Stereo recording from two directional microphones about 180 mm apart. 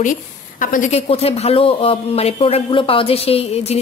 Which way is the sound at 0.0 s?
45° left (ahead or behind).